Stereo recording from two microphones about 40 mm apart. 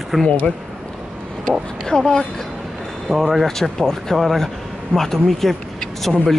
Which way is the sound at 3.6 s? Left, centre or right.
Centre.